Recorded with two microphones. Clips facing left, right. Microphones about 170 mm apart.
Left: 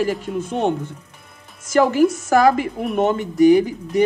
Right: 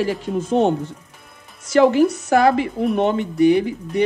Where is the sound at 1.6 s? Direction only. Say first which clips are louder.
Right 1 dB; 45° left (ahead or behind).